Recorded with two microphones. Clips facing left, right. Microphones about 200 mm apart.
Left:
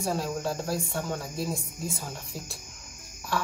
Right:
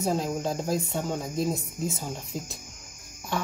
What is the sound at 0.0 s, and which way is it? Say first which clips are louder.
Speech: right 2 dB; 20° right (ahead or behind).